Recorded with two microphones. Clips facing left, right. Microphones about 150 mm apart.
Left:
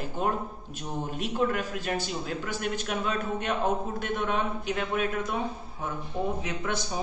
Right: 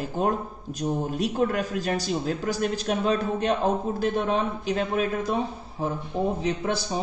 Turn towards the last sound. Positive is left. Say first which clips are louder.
# right 5 dB
turn(degrees=-30)  # may be behind; listen again after turning